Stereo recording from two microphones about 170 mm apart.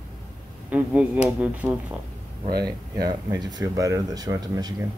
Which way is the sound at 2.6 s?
25° right (ahead or behind).